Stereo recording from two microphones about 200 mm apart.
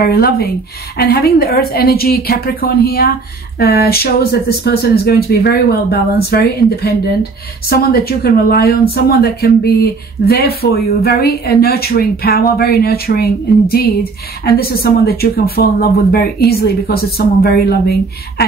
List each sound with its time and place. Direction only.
0.0 s speech: 50° left (ahead or behind)